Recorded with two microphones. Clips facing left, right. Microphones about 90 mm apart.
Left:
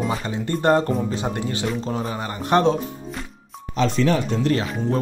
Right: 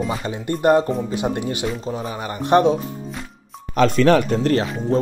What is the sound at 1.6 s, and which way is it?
Speech, 5° right (ahead or behind).